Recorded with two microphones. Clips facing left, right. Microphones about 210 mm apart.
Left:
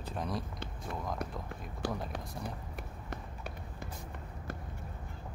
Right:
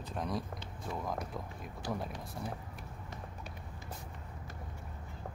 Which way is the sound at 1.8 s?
65° left (ahead or behind).